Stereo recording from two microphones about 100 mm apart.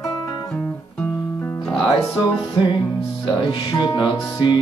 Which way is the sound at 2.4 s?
55° left (ahead or behind).